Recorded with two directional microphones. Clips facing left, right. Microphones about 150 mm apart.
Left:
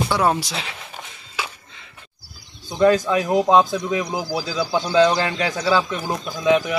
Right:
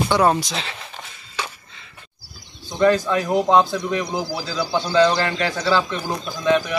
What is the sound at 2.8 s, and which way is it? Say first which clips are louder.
Speech: left 1 dB; 15° left (ahead or behind).